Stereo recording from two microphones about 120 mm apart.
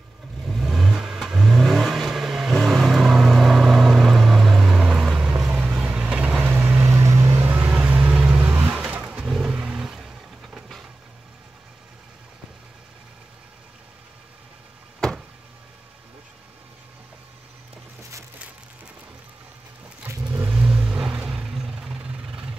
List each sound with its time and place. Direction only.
0.5 s vehicle: centre (ahead or behind)
20.0 s vehicle: 25° right (ahead or behind); by 22.5 s 10° right (ahead or behind)